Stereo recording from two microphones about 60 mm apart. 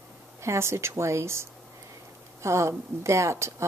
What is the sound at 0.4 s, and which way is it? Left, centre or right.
A woman's voice, right.